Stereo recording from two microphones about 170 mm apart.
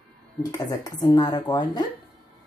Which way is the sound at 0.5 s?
20° left (ahead or behind).